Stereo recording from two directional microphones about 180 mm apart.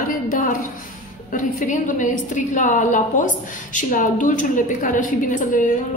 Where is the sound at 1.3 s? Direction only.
45° left (ahead or behind).